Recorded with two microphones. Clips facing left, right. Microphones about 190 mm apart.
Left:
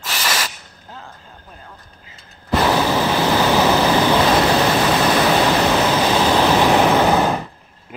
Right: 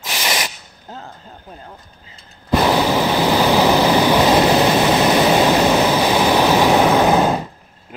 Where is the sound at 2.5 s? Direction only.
15° right (ahead or behind).